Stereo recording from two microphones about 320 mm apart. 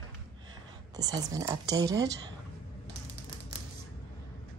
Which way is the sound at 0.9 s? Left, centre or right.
Centre.